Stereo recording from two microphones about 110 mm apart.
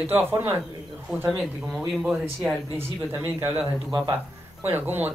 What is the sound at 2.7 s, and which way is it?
Speech, 20° right (ahead or behind).